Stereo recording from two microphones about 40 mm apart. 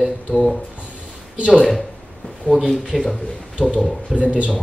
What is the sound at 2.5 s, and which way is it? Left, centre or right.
Speech, centre.